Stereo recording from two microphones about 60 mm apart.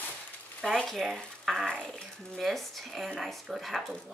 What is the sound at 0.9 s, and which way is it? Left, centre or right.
Speech, centre.